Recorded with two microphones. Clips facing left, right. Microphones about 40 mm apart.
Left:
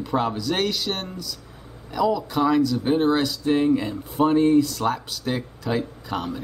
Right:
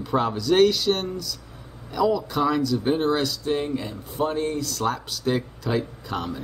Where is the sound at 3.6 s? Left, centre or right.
Centre.